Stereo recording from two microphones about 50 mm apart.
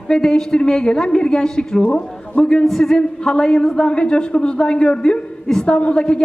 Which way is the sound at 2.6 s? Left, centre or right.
Centre.